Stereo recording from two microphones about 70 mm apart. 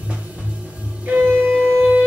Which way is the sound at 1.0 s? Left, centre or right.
Right.